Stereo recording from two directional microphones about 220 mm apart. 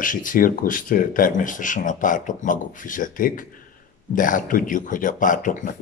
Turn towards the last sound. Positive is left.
turn(degrees=35)  # may be behind; listen again after turning